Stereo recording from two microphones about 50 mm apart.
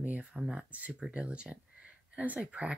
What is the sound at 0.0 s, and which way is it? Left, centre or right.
Speech, right.